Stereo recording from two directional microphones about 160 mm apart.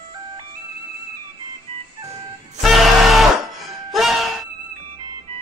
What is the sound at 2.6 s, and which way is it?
Music, centre (ahead or behind).